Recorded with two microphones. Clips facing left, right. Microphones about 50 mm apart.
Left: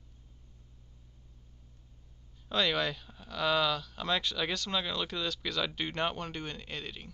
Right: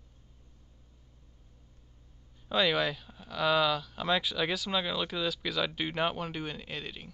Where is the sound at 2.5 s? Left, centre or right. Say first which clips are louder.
Right 2 dB; centre.